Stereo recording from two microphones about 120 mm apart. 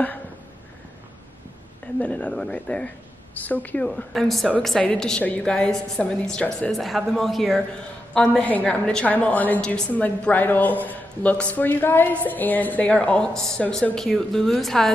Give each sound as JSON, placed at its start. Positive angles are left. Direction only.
{"t": 2.0, "sound": "a woman's voice", "side_deg": 10}
{"t": 8.4, "sound": "a woman's voice", "side_deg": 10}